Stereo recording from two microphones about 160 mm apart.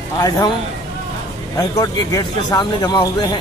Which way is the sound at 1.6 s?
25° left (ahead or behind).